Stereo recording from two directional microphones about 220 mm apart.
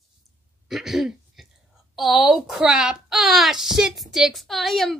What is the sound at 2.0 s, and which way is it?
A woman's voice, centre (ahead or behind).